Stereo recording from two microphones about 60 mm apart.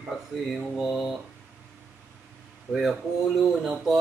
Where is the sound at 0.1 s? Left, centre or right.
Centre.